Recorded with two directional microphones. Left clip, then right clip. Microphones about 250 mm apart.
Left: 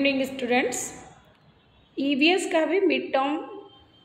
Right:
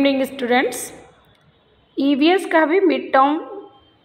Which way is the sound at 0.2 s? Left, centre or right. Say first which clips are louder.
Right 6 dB; right.